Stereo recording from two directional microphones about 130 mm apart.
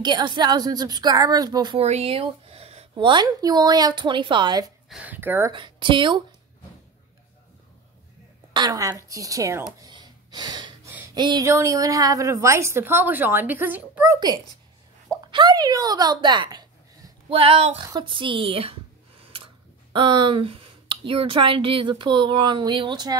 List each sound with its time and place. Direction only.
0.0 s a woman's voice: 35° right (ahead or behind)
1.8 s speech: 55° right (ahead or behind)
3.1 s a woman's voice: 30° right (ahead or behind)
4.8 s speech: 10° right (ahead or behind)
5.5 s a woman's voice: 40° right (ahead or behind)
8.5 s a woman's voice: 30° right (ahead or behind)
9.8 s gasp: 35° right (ahead or behind)
11.1 s a woman's voice: 35° right (ahead or behind)
11.4 s a woman's voice: 25° right (ahead or behind)
15.3 s a woman's voice: 30° right (ahead or behind)
17.3 s a woman's voice: 45° right (ahead or behind)